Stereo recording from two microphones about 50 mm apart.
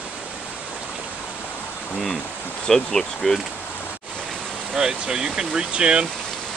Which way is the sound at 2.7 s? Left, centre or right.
Centre.